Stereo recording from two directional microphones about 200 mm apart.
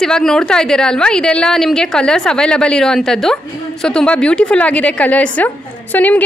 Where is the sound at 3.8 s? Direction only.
5° left (ahead or behind).